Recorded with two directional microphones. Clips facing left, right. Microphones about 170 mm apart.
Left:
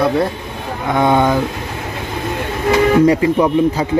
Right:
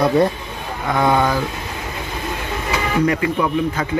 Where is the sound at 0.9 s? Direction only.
20° left (ahead or behind).